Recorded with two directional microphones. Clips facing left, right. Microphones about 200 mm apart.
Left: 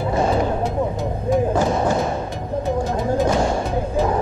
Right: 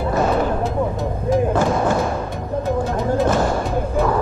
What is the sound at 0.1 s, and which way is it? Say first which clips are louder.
Music: right 1 dB; 25° left (ahead or behind).